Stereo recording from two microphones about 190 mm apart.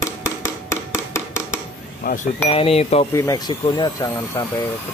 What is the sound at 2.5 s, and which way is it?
Speech, 30° left (ahead or behind).